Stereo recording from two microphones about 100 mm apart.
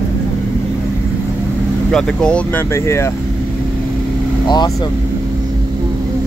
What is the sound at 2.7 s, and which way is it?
Speech, 30° left (ahead or behind).